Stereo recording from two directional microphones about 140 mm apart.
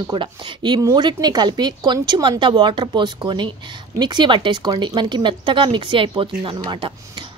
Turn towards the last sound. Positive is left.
turn(degrees=-35)  # may be behind; listen again after turning